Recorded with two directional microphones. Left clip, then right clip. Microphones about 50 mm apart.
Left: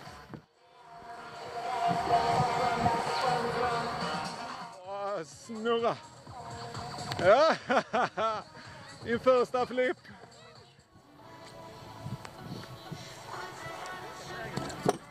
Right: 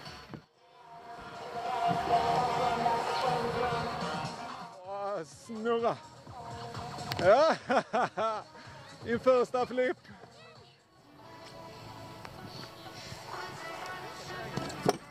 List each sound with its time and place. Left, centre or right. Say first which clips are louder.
1.0 s a sound: left 1 dB; centre; by 4.7 s left
4.8 s music: even; centre
7.1 s speech: left 1 dB; centre
11.5 s music: even; centre
14.5 s chop: even; centre